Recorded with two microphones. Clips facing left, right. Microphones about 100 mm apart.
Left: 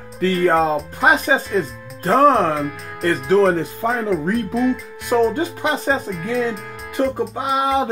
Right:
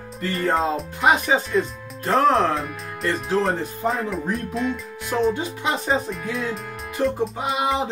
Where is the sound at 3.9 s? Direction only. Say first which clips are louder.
Left 6 dB; centre (ahead or behind).